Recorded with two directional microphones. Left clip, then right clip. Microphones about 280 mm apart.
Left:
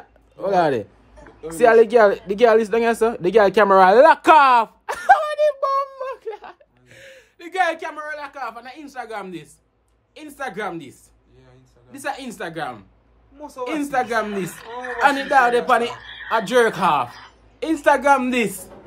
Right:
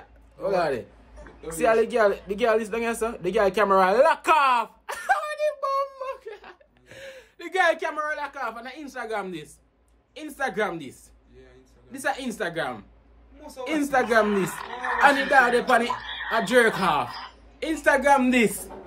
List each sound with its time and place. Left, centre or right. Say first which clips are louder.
0.4 s a man's voice: left 6 dB; left
6.9 s a woman's voice: right 2 dB; centre
13.4 s a woman's voice: left 7 dB; centre
13.7 s speech: even; centre
14.5 s a woman's voice: right 1 dB; centre
15.3 s a woman's voice: left 3 dB; centre
15.9 s a sound: right 4 dB; centre
16.3 s a woman's voice: left 3 dB; centre